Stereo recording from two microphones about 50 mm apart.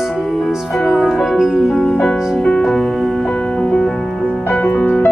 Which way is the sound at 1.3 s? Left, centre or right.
Centre.